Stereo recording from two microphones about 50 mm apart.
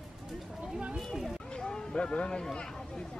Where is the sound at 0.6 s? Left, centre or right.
Centre.